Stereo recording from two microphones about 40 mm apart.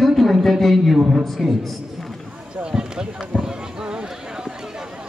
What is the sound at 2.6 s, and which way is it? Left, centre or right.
Speech, centre.